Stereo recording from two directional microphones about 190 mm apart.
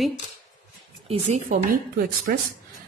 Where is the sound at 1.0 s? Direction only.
40° right (ahead or behind).